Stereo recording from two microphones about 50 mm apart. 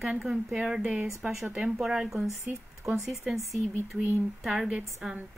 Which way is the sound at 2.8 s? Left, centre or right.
Right.